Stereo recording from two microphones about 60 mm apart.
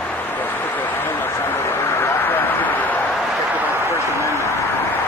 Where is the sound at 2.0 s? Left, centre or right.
Left.